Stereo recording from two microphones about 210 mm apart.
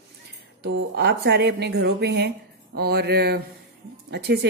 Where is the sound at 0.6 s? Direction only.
55° right (ahead or behind).